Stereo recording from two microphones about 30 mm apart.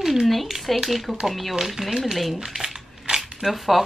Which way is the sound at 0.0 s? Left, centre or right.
Centre.